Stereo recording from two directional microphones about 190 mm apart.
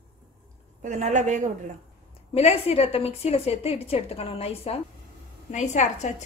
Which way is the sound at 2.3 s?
30° left (ahead or behind).